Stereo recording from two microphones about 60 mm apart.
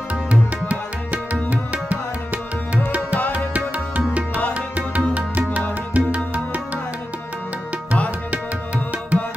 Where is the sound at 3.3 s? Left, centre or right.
Right.